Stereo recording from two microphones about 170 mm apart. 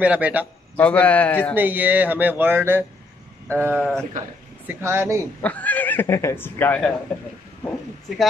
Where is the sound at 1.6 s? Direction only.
10° right (ahead or behind).